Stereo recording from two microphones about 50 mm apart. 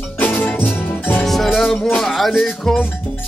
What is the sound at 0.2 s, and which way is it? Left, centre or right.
Music, left.